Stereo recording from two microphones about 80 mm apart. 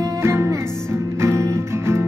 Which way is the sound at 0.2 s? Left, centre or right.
Right.